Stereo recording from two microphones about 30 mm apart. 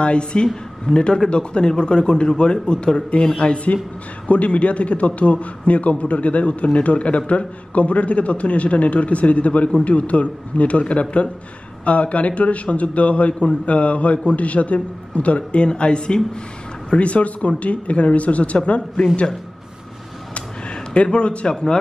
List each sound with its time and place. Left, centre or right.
0.0 s a man's voice: left
16.9 s a man's voice: left
20.9 s speech: left
21.5 s a man's voice: left